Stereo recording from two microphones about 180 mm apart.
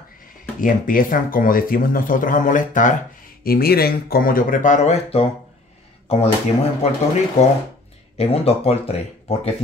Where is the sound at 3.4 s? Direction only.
60° left (ahead or behind); by 5.2 s 40° left (ahead or behind).